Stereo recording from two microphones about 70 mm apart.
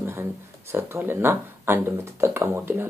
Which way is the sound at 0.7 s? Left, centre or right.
Right.